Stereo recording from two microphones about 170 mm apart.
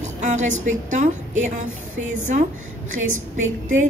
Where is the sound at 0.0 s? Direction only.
45° right (ahead or behind).